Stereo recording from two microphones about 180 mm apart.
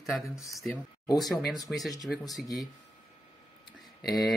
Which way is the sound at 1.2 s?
Centre (ahead or behind).